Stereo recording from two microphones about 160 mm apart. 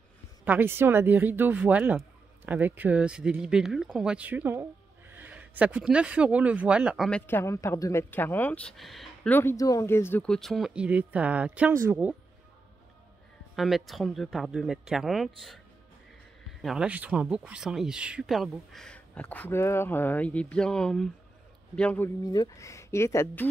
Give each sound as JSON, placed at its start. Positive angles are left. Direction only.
{"t": 0.5, "sound": "speech", "side_deg": -15}
{"t": 7.1, "sound": "speech", "side_deg": 10}
{"t": 9.3, "sound": "speech", "side_deg": 15}
{"t": 13.6, "sound": "speech", "side_deg": 0}
{"t": 16.6, "sound": "speech", "side_deg": -5}
{"t": 22.2, "sound": "speech", "side_deg": 25}